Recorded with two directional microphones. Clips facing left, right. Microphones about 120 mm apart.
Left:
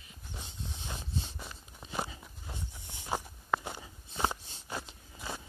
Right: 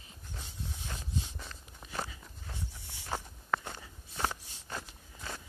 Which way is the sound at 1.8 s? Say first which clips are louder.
Left 2 dB; 15° left (ahead or behind).